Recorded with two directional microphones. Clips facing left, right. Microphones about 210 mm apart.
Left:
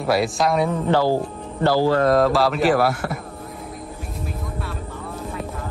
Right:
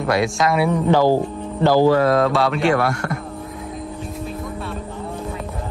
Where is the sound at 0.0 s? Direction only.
Centre (ahead or behind).